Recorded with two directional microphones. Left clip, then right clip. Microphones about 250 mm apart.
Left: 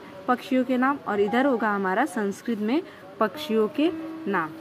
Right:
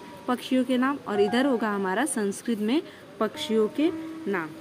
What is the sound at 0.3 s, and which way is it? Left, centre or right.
A woman's voice, centre.